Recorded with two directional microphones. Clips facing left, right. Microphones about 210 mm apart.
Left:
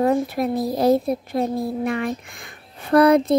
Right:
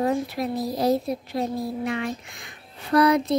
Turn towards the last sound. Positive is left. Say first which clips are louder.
# left 5 dB
turn(degrees=55)  # may be behind; listen again after turning